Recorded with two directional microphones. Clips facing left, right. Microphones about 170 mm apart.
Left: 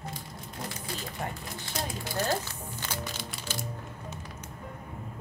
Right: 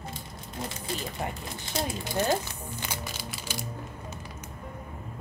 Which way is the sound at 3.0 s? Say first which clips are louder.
Even; 5° right (ahead or behind).